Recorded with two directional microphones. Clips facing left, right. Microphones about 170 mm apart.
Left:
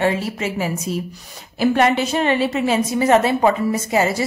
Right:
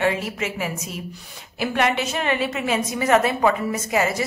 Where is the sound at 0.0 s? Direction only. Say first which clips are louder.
Left 3 dB; 35° left (ahead or behind).